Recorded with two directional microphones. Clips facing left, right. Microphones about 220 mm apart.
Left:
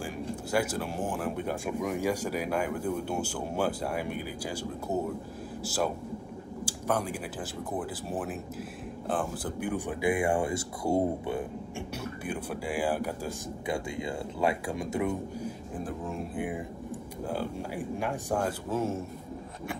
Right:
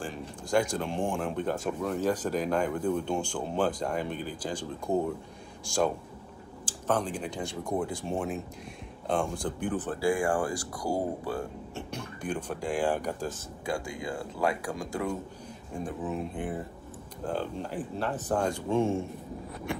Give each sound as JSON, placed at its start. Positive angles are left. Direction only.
{"t": 0.0, "sound": "speech", "side_deg": 5}
{"t": 6.6, "sound": "speech", "side_deg": 10}
{"t": 11.9, "sound": "speech", "side_deg": 10}
{"t": 13.7, "sound": "speech", "side_deg": 25}
{"t": 15.4, "sound": "a sound", "side_deg": 0}
{"t": 16.3, "sound": "speech", "side_deg": 10}